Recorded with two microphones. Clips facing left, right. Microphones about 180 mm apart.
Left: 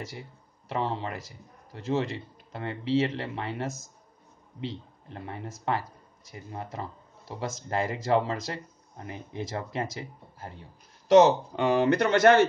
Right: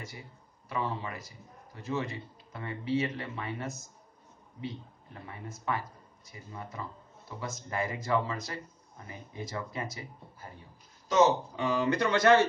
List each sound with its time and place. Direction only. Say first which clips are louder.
0.7 s a man's voice: left 4 dB; 70° left (ahead or behind)
7.2 s a man's voice: left 5 dB; 85° left; by 12.4 s 55° left (ahead or behind)